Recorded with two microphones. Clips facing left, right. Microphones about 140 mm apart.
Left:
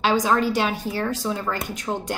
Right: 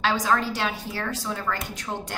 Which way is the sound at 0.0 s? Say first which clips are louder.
Left 4 dB; 15° left (ahead or behind).